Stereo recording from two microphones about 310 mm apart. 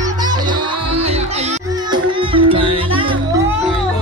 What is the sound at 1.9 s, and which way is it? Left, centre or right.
Music, centre.